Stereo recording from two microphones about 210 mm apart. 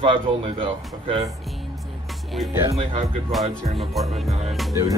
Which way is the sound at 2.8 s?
30° right (ahead or behind).